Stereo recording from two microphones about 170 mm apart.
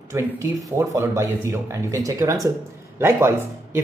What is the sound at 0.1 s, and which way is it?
Speech, 15° right (ahead or behind).